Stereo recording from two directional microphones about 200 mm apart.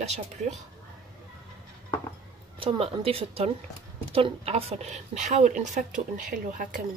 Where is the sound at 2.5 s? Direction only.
25° right (ahead or behind).